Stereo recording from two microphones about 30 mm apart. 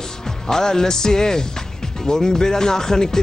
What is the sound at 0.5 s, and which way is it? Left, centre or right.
Speech, centre.